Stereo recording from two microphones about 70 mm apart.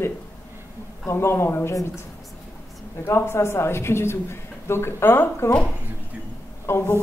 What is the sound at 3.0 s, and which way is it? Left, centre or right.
Speech, left.